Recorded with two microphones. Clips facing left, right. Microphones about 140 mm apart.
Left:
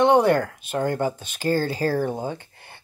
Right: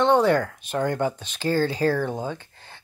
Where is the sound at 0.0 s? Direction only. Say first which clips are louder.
Left 2 dB; 15° left (ahead or behind).